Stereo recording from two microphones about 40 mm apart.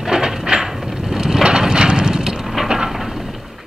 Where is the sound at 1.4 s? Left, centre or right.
Right.